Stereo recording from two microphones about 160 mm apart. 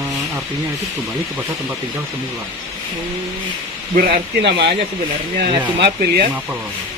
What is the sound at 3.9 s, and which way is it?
Speech, 70° right (ahead or behind).